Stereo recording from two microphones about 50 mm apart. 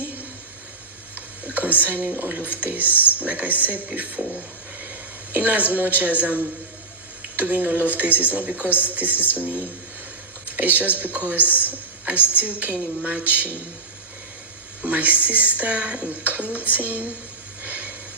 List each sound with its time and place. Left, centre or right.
1.1 s a sound: right
2.6 s speech: right
2.9 s speech: left
3.2 s speech: right
5.3 s a woman's voice: right
14.8 s speech: right
17.6 s a sound: right